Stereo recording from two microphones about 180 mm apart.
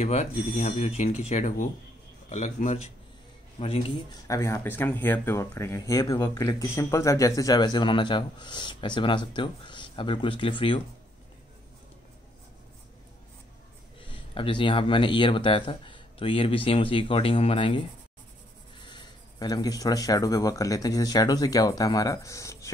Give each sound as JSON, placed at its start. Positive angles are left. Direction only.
{"t": 0.0, "sound": "speech", "side_deg": 40}
{"t": 4.1, "sound": "speech", "side_deg": 15}
{"t": 14.0, "sound": "speech", "side_deg": 30}
{"t": 18.9, "sound": "speech", "side_deg": 20}